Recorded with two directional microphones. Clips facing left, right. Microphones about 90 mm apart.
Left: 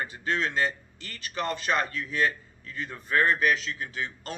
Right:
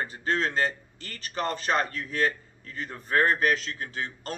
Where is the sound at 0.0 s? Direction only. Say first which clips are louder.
Right 1 dB; 40° right (ahead or behind).